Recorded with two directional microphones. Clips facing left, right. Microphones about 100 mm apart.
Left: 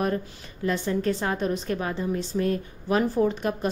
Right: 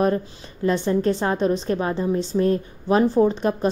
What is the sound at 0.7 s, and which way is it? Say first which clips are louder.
A woman's voice: right 5 dB; 30° right (ahead or behind).